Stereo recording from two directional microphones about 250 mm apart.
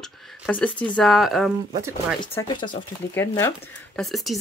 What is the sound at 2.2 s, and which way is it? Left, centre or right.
Speech, centre.